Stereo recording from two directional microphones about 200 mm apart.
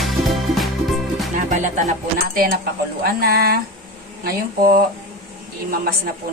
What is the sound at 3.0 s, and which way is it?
Speech, 50° right (ahead or behind).